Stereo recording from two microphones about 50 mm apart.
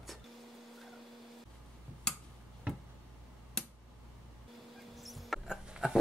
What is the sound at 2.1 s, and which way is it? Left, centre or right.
Tick-tock, centre.